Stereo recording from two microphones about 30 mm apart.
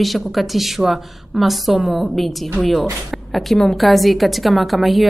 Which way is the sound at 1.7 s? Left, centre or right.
Right.